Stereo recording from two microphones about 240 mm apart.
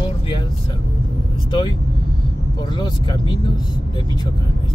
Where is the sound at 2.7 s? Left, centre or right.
Centre.